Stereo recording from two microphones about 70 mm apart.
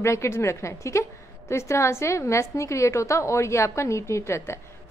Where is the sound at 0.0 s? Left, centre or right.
Left.